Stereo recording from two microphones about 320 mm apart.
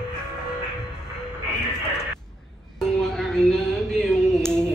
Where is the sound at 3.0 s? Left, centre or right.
Centre.